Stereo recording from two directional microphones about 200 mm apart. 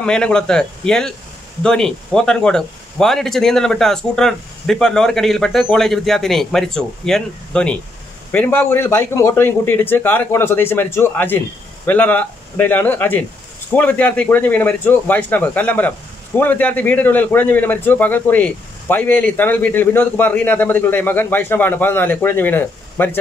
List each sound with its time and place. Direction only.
0.0 s a man's voice: 5° left (ahead or behind)